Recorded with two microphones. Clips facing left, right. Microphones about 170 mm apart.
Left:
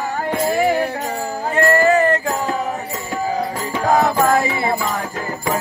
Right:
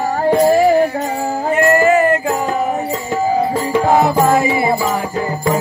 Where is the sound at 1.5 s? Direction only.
20° right (ahead or behind).